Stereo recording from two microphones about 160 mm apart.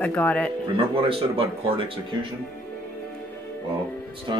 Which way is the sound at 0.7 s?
35° right (ahead or behind).